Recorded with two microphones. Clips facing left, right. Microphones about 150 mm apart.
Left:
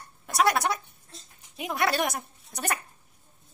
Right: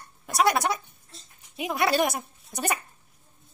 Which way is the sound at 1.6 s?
Centre (ahead or behind).